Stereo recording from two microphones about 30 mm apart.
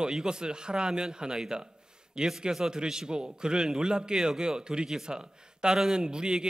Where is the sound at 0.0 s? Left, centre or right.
Right.